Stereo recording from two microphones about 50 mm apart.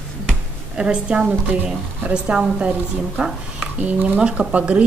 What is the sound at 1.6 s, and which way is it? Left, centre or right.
Speech, right.